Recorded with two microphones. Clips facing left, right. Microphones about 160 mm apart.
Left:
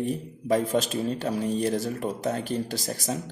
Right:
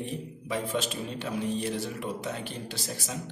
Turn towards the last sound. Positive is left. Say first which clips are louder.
# left 6 dB
turn(degrees=40)  # may be behind; listen again after turning